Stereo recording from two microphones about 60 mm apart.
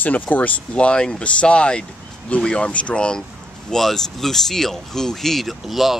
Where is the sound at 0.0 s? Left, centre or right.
Left.